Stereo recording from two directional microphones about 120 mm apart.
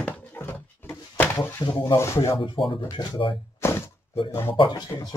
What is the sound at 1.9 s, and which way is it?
Speech, 25° left (ahead or behind).